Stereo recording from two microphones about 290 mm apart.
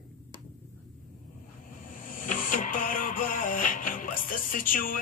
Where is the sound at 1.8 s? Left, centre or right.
Left.